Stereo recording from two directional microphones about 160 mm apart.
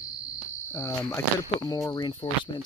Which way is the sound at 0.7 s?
15° left (ahead or behind).